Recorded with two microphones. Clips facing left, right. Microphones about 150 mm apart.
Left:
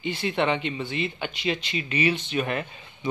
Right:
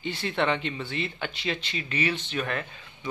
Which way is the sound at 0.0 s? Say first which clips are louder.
Left 2 dB; 5° left (ahead or behind).